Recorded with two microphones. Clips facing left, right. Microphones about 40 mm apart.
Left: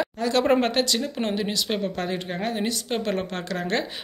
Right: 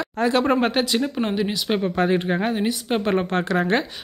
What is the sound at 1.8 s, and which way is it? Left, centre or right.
A woman's voice, right.